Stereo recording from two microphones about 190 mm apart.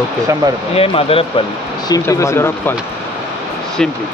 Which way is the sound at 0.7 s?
30° left (ahead or behind).